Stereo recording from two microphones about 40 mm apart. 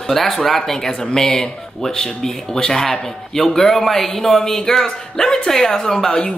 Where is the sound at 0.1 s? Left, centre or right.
Centre.